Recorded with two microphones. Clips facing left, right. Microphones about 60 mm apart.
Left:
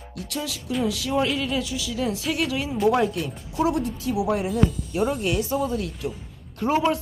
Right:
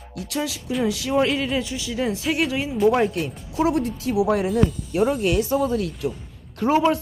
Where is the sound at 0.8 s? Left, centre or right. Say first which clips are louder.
Right 3 dB; right.